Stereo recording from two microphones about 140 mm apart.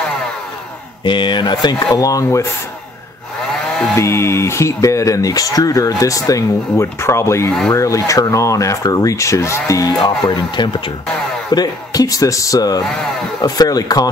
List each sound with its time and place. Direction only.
1.0 s speech: 35° left (ahead or behind)
3.5 s chainsaw: 5° left (ahead or behind)
3.9 s speech: 20° left (ahead or behind)